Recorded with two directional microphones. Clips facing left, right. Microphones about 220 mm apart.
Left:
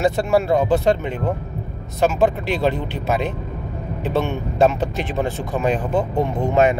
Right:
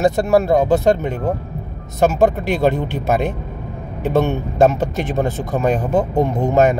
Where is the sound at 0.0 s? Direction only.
45° right (ahead or behind).